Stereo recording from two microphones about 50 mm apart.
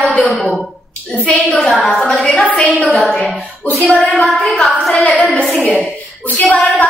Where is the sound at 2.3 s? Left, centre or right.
Centre.